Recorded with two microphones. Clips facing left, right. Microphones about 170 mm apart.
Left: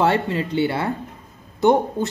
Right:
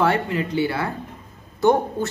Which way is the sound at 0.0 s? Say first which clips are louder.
Left 1 dB; 25° left (ahead or behind).